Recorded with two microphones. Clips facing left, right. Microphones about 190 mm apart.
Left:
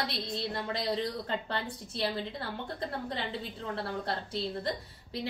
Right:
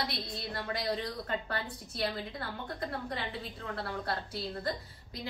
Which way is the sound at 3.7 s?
25° left (ahead or behind).